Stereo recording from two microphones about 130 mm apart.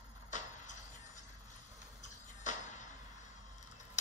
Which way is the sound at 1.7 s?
70° left (ahead or behind).